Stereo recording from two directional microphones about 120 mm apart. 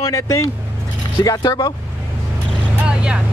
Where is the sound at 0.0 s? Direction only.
30° left (ahead or behind).